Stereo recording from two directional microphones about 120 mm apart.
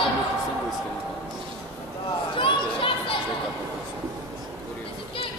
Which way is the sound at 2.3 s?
45° left (ahead or behind).